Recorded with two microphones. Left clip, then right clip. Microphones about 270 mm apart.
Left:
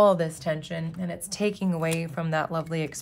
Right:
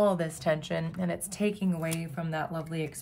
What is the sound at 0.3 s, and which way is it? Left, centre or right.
Speech, centre.